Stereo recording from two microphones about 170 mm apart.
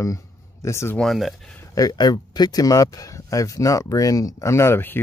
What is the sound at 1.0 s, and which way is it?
Speech, centre (ahead or behind).